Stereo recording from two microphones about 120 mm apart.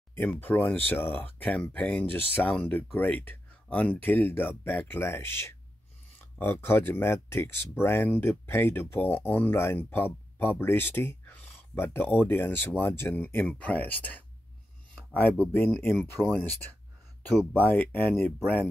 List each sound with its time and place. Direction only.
0.1 s speech: 15° left (ahead or behind)
17.5 s speech: 15° left (ahead or behind)